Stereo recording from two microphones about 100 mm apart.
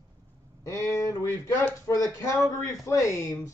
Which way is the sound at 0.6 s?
30° left (ahead or behind).